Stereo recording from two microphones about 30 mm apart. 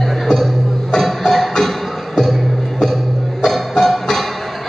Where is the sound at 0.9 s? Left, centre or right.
Centre.